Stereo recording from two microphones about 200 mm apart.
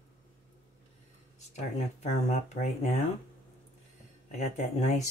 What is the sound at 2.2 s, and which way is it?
Speech, 35° left (ahead or behind).